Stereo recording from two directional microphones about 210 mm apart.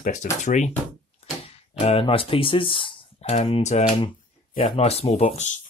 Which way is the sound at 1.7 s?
30° left (ahead or behind).